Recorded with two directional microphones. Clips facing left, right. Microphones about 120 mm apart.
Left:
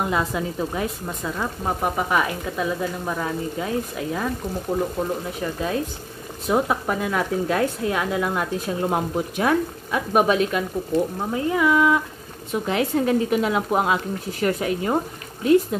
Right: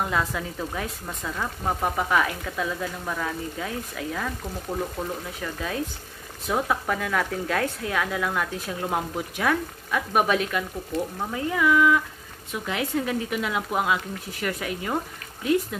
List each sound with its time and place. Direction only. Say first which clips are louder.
0.0 s speech: left 3 dB; 20° left (ahead or behind); by 15.9 s 35° left (ahead or behind)